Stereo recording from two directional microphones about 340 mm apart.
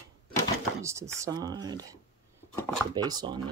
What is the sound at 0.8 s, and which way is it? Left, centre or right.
Speech, centre.